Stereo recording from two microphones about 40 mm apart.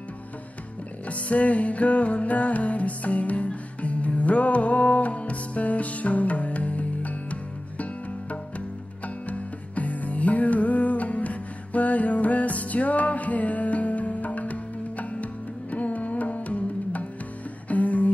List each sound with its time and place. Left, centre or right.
1.0 s music: left